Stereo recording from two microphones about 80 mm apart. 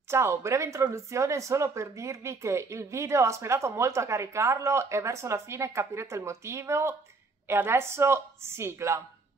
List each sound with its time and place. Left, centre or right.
0.1 s speech: right